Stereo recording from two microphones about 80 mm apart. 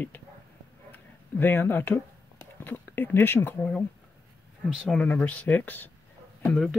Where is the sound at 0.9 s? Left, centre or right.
Left.